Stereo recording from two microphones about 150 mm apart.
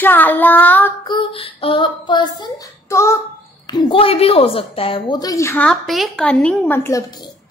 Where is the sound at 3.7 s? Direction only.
30° left (ahead or behind).